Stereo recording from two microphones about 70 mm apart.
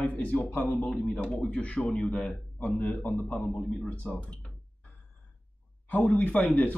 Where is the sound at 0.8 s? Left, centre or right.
Centre.